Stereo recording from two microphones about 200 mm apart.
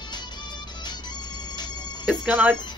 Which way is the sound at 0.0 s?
20° left (ahead or behind).